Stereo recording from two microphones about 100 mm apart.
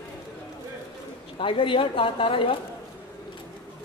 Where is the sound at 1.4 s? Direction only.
60° left (ahead or behind).